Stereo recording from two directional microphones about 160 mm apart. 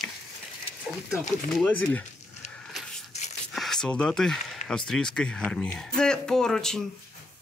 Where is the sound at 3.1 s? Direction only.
45° left (ahead or behind).